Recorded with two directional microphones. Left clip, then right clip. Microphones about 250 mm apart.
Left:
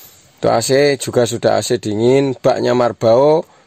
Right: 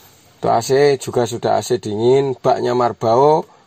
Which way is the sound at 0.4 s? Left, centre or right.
Left.